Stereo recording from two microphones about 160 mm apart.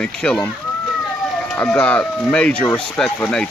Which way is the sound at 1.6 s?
10° left (ahead or behind).